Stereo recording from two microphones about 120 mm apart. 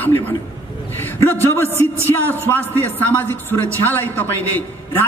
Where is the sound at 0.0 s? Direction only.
15° left (ahead or behind).